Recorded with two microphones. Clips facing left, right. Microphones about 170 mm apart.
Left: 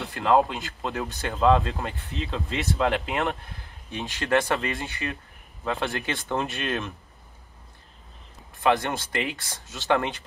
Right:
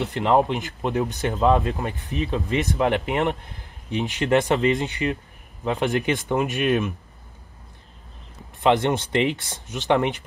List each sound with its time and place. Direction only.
0.0 s speech: 20° right (ahead or behind)
8.6 s speech: 20° right (ahead or behind)